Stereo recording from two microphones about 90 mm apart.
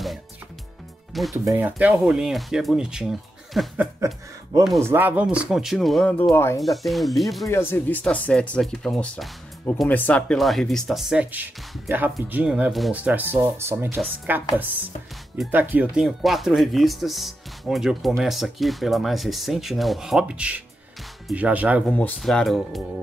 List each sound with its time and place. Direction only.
1.3 s speech: 30° right (ahead or behind)
1.6 s speech: 20° right (ahead or behind)
2.1 s speech: 5° right (ahead or behind)
4.0 s speech: 35° right (ahead or behind)
4.8 s speech: 20° right (ahead or behind); by 6.0 s centre (ahead or behind)
6.3 s speech: 25° left (ahead or behind)
6.6 s speech: centre (ahead or behind)
7.4 s speech: 30° left (ahead or behind)
8.0 s speech: 10° left (ahead or behind)
10.3 s speech: centre (ahead or behind)
11.9 s speech: 20° right (ahead or behind)
16.0 s speech: centre (ahead or behind)
21.8 s speech: 15° left (ahead or behind)
22.2 s speech: 5° left (ahead or behind)